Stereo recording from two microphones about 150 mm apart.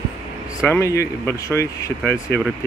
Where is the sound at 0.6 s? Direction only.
15° left (ahead or behind).